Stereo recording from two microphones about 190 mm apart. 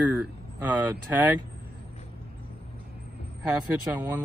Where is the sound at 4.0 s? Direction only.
10° right (ahead or behind).